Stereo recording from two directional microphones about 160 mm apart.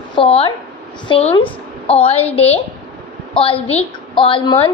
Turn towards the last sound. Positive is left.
turn(degrees=35)  # may be behind; listen again after turning